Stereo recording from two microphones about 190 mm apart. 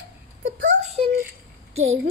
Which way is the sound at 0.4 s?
65° right (ahead or behind).